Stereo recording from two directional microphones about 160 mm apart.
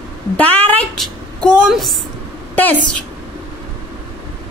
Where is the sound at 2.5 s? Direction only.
10° left (ahead or behind).